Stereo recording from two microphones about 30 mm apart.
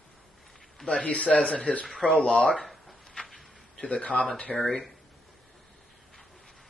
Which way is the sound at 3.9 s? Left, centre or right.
Left.